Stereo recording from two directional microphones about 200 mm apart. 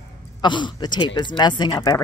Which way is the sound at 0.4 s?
25° left (ahead or behind).